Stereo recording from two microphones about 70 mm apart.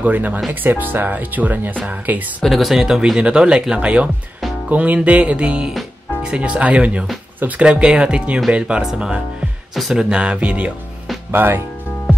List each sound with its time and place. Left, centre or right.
0.0 s speech: right
2.4 s speech: centre
11.3 s speech: right